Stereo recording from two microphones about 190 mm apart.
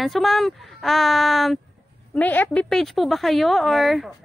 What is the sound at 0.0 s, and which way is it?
Speech, centre (ahead or behind).